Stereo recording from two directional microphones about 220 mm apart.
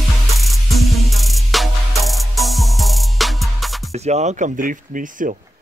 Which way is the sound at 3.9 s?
30° right (ahead or behind).